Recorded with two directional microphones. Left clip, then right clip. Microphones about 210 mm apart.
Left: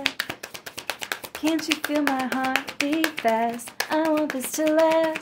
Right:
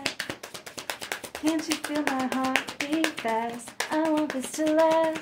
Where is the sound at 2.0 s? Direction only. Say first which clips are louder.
Left 3 dB; 45° left (ahead or behind).